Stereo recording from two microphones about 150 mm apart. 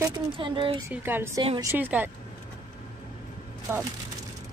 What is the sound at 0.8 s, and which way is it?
A woman's voice, 15° right (ahead or behind).